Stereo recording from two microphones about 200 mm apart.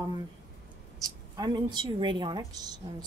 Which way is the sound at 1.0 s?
20° right (ahead or behind).